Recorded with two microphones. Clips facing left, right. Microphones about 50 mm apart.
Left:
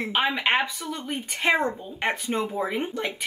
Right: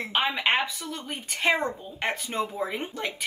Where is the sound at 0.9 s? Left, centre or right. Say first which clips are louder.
Left 3 dB; left.